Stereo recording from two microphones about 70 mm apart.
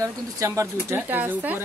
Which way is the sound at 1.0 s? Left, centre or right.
Right.